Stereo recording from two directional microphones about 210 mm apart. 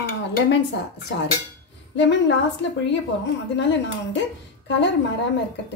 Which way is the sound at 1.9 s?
60° left (ahead or behind).